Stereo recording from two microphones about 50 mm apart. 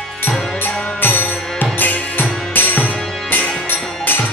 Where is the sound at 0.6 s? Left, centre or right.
Left.